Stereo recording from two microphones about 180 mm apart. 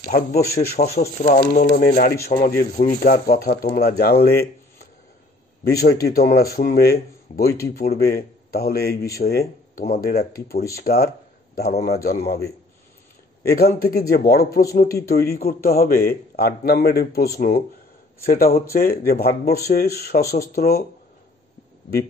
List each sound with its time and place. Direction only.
0.1 s speech: 55° left (ahead or behind)
5.8 s a man's voice: 60° left (ahead or behind)
13.4 s speech: 60° left (ahead or behind)